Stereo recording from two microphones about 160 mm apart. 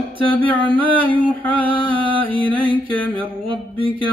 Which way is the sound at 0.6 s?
35° right (ahead or behind).